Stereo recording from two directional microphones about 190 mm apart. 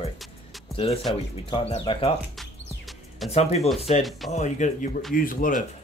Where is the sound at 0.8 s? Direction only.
30° left (ahead or behind).